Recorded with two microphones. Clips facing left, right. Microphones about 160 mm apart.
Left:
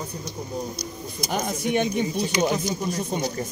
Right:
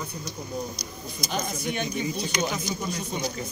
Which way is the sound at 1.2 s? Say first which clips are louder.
Left 4 dB; 50° left (ahead or behind).